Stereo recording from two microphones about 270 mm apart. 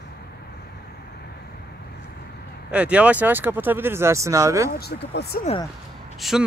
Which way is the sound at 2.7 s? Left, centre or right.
Centre.